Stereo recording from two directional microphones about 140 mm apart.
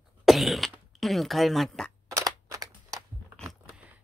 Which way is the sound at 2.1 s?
25° right (ahead or behind).